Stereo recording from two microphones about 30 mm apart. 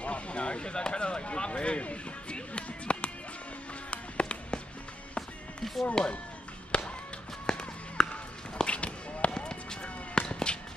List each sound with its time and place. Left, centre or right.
0.0 s speech: left
2.3 s music: left
6.0 s speech: left
6.7 s music: left
7.4 s music: left
8.5 s a sound: left
9.3 s basketball bounce: left